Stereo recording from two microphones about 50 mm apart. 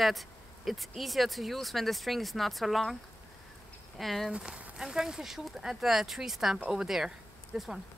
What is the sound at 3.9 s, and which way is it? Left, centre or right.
Speech, centre.